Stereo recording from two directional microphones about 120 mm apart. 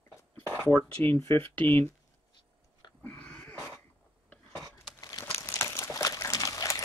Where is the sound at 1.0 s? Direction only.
15° left (ahead or behind).